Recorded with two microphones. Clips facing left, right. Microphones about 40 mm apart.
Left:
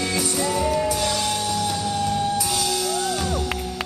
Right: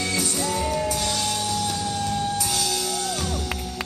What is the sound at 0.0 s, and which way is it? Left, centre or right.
Music, centre.